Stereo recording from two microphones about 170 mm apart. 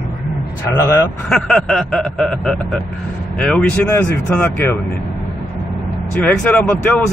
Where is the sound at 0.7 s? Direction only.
15° left (ahead or behind).